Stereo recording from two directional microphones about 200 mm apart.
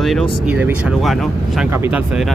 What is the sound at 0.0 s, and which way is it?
Speech, centre (ahead or behind).